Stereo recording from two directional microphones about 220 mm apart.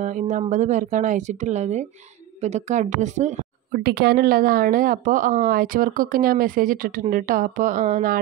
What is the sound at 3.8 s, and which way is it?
A woman's voice, 45° right (ahead or behind).